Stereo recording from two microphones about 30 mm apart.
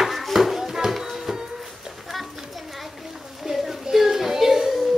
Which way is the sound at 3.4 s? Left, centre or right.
Centre.